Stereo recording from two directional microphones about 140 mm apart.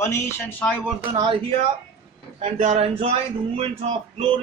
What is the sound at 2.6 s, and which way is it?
Speech, 50° right (ahead or behind).